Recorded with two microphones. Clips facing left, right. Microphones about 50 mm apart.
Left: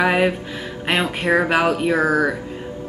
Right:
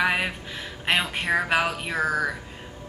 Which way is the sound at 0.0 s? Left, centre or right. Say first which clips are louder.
Left 7 dB; centre.